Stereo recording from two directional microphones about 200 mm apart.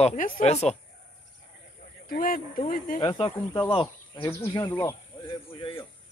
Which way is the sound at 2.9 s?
25° left (ahead or behind).